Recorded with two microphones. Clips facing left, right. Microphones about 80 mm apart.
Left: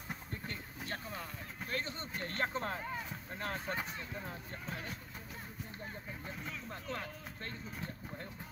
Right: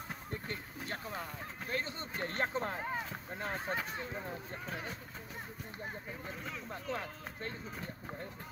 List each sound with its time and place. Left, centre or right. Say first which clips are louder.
1.7 s speech: right 1 dB; right
2.8 s speech: right 3 dB; right
3.3 s speech: right 2 dB; centre
6.2 s speech: even; centre